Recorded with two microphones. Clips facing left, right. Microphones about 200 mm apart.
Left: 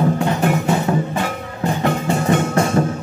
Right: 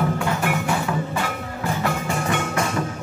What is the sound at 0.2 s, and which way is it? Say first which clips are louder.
Music: left 5 dB; 25° left (ahead or behind).